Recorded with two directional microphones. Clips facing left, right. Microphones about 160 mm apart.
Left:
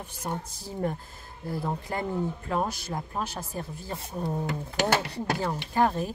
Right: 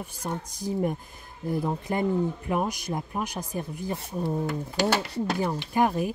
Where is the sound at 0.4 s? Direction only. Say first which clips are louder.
Right 4 dB; 15° right (ahead or behind).